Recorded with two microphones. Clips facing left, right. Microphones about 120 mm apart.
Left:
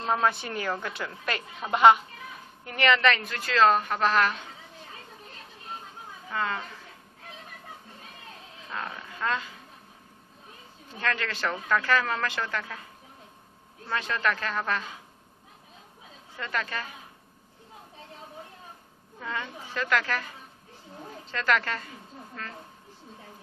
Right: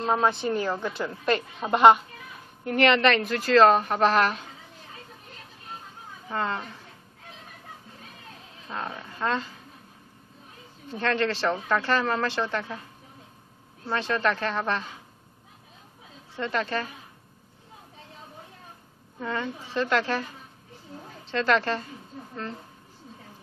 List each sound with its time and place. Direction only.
0.0 s speech: 10° right (ahead or behind)
2.6 s a woman's voice: 45° right (ahead or behind)
6.3 s speech: 30° right (ahead or behind)
8.7 s speech: 25° right (ahead or behind)
11.0 s speech: 30° right (ahead or behind)
13.8 s speech: 30° right (ahead or behind)
16.3 s speech: 30° right (ahead or behind)
19.1 s a woman's voice: 25° right (ahead or behind)
21.3 s speech: 30° right (ahead or behind)